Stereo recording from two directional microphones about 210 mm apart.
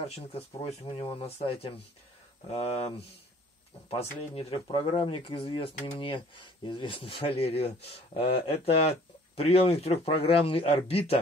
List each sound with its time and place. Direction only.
0.0 s speech: 30° left (ahead or behind)
3.9 s speech: 30° left (ahead or behind)